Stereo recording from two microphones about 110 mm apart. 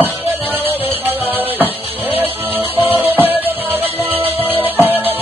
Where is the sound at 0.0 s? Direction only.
20° right (ahead or behind).